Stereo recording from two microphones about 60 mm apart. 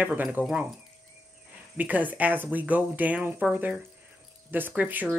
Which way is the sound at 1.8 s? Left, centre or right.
Right.